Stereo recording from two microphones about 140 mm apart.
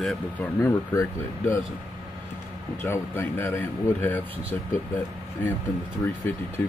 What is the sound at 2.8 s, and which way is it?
Speech, 15° left (ahead or behind).